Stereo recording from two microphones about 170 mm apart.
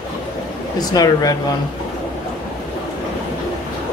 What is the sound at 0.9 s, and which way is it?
Speech, 20° left (ahead or behind).